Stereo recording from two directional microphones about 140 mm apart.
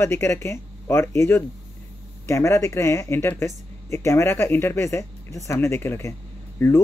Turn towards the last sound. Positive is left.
turn(degrees=15)  # may be behind; listen again after turning